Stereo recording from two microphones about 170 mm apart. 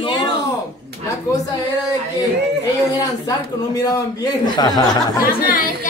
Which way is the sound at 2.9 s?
20° left (ahead or behind).